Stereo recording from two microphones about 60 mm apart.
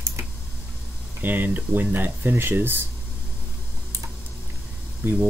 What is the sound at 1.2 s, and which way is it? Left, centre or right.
Speech, right.